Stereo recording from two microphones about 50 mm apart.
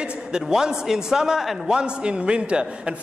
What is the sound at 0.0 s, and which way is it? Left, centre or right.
A man's voice, centre.